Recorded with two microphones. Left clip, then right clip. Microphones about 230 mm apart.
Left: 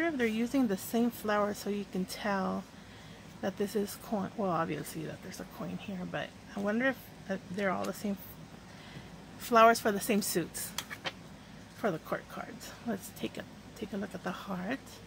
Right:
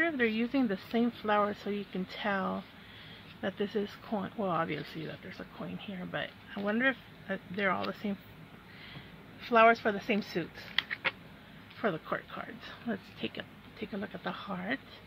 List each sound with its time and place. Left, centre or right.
0.0 s speech: centre
9.5 s a woman's voice: left
11.8 s speech: centre